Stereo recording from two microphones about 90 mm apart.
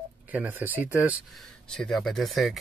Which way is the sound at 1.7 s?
5° left (ahead or behind).